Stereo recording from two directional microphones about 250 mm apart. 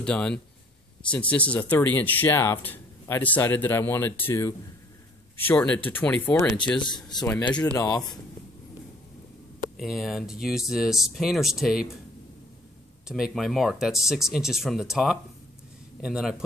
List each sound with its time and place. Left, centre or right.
0.0 s speech: centre
5.9 s speech: centre
6.8 s speech: centre
9.8 s speech: centre
13.1 s speech: centre